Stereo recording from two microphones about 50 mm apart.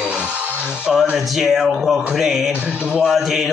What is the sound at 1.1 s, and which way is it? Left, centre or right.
Speech, centre.